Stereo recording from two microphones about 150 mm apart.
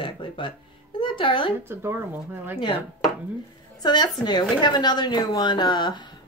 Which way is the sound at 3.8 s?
30° left (ahead or behind).